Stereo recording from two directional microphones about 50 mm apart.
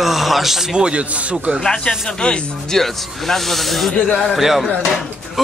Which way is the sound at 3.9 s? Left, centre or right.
Centre.